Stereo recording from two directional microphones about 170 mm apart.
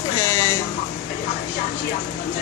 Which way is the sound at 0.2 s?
15° left (ahead or behind).